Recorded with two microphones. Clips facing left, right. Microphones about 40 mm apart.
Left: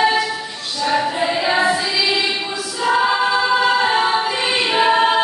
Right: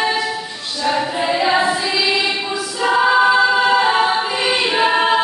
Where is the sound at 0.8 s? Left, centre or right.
Centre.